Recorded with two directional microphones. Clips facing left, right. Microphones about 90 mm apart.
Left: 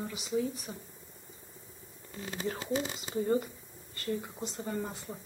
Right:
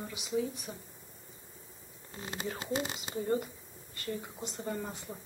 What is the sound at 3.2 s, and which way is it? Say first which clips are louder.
Speech: left 2 dB; centre (ahead or behind).